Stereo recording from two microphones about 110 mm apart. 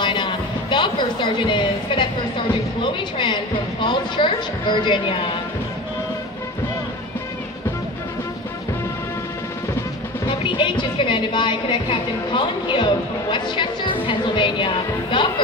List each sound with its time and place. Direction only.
0.0 s a sound: 45° left (ahead or behind)
3.8 s a woman's voice: 45° left (ahead or behind)
10.2 s a woman's voice: 45° left (ahead or behind)